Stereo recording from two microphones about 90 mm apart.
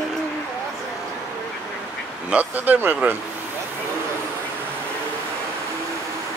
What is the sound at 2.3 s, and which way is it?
Speech, 20° right (ahead or behind).